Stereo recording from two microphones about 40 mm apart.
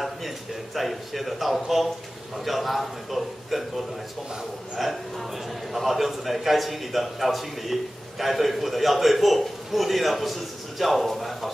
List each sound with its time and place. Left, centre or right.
0.7 s a man's voice: centre